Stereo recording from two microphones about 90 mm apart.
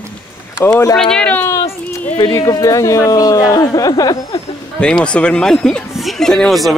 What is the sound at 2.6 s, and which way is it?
Speech, 35° left (ahead or behind).